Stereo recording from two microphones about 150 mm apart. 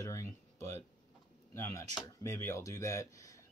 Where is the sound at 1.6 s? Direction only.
15° left (ahead or behind).